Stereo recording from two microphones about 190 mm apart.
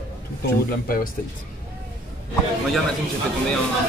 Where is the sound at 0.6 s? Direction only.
50° left (ahead or behind).